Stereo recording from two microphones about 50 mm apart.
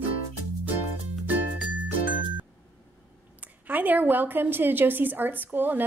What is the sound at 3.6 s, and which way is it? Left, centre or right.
A woman's voice, right.